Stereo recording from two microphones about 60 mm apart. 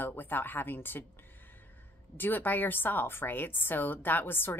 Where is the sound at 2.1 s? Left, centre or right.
Left.